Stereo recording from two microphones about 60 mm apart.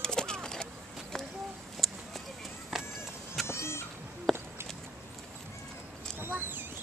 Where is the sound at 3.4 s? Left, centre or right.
Left.